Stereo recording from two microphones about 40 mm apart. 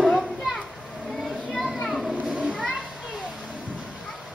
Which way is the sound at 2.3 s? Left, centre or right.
Right.